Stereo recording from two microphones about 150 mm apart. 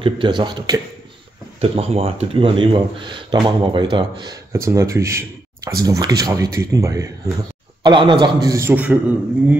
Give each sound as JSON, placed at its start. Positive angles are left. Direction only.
{"t": 0.0, "sound": "speech", "side_deg": -30}
{"t": 1.6, "sound": "speech", "side_deg": -40}
{"t": 8.7, "sound": "a man's voice", "side_deg": -10}